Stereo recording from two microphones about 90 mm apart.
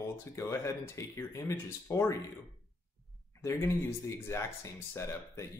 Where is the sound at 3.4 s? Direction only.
30° left (ahead or behind).